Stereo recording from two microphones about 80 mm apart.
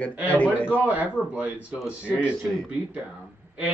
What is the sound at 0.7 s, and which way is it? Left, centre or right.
Speech, centre.